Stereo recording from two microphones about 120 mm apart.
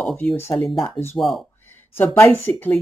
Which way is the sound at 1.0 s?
45° left (ahead or behind).